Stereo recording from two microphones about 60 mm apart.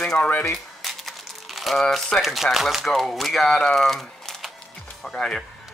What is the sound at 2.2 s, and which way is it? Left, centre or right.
Speech, centre.